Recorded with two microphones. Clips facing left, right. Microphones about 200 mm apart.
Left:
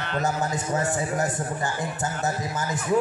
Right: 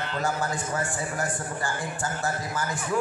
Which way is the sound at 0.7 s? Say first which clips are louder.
Left 5 dB; 20° left (ahead or behind).